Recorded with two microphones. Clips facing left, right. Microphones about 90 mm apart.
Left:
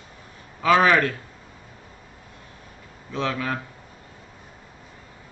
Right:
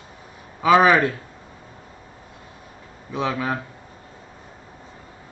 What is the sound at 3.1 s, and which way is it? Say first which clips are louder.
Speech: right 2 dB; 15° right (ahead or behind).